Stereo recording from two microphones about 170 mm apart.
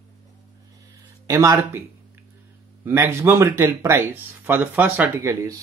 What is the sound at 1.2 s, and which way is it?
Speech, 20° right (ahead or behind).